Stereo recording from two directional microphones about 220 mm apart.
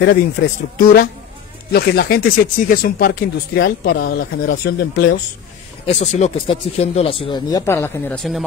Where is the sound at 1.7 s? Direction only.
45° left (ahead or behind).